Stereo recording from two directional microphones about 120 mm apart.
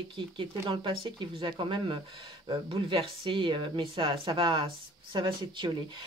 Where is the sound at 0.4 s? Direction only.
45° right (ahead or behind).